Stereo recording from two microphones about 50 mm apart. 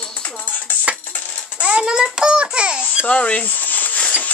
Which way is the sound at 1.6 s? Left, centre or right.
Right.